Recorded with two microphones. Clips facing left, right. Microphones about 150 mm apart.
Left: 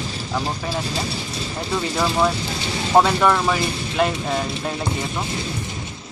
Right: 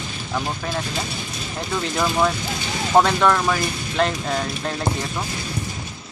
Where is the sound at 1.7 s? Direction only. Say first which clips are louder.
Left 1 dB; 5° left (ahead or behind).